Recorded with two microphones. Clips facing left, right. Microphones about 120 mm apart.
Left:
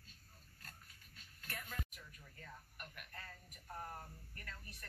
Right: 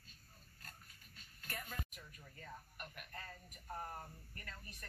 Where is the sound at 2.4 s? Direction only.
15° right (ahead or behind).